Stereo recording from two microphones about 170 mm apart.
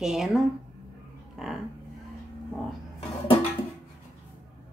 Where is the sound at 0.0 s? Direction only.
5° right (ahead or behind).